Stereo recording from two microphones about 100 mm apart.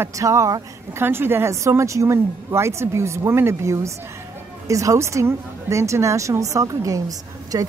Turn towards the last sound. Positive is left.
turn(degrees=-35)  # may be behind; listen again after turning